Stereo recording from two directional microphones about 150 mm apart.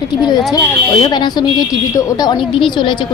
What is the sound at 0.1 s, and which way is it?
Speech, 30° left (ahead or behind).